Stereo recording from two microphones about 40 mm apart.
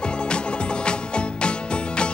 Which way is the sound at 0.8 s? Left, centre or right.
Left.